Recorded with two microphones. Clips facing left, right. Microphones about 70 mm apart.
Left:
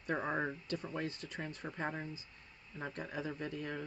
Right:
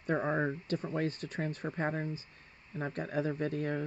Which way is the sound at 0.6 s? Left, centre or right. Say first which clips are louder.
Right 6 dB; right.